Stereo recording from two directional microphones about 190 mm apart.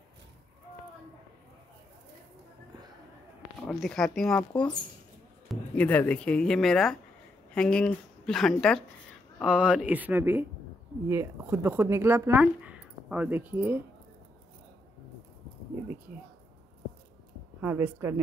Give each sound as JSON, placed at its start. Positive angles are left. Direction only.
{"t": 3.5, "sound": "speech", "side_deg": 5}
{"t": 17.6, "sound": "speech", "side_deg": -10}